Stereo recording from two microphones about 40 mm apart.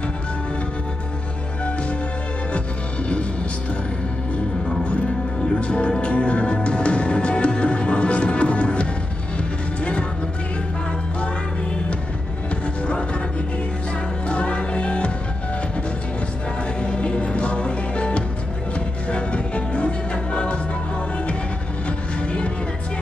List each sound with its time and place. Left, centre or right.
5.6 s music: left
14.2 s music: left
16.8 s music: left
21.8 s music: left